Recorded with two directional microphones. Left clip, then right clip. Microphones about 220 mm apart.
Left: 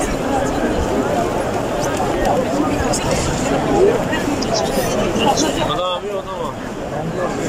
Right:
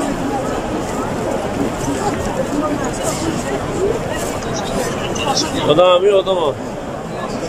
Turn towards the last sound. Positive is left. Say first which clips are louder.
# right 9 dB
turn(degrees=-35)  # may be behind; listen again after turning